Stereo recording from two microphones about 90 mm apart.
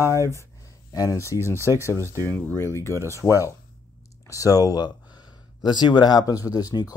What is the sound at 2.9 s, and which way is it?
Speech, 35° right (ahead or behind).